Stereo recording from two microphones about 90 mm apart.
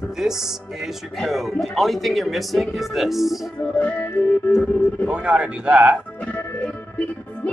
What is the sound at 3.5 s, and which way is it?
Music, 20° left (ahead or behind).